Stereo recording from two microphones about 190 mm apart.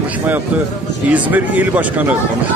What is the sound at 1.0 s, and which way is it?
Speech, 10° right (ahead or behind).